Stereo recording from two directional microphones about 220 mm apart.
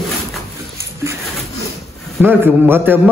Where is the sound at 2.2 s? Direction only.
10° right (ahead or behind).